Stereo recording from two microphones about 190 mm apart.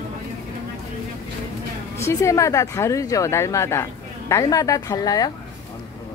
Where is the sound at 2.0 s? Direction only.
15° left (ahead or behind).